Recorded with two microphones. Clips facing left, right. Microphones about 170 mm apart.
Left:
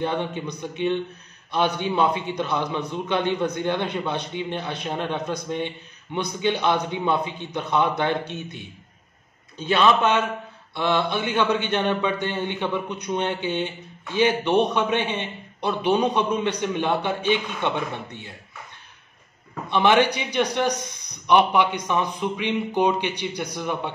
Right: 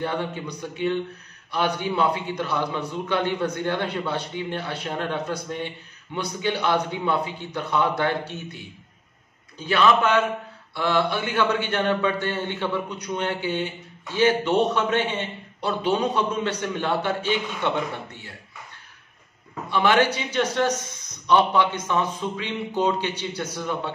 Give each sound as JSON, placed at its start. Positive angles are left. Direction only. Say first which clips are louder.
{"t": 0.0, "sound": "speech", "louder": "left 2 dB", "side_deg": 20}
{"t": 19.7, "sound": "speech", "louder": "left 1 dB", "side_deg": 20}